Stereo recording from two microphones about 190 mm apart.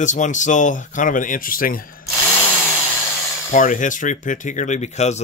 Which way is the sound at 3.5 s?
45° left (ahead or behind).